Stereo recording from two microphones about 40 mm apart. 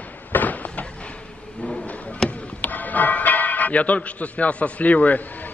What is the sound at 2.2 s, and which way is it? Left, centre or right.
Chop, centre.